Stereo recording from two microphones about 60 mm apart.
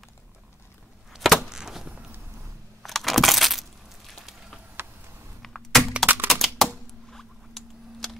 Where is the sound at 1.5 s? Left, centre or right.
Centre.